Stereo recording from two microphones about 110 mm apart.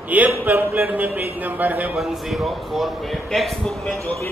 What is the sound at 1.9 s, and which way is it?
A man's voice, centre (ahead or behind).